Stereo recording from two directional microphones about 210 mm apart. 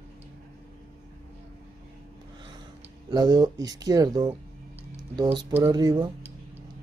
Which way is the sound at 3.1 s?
20° right (ahead or behind).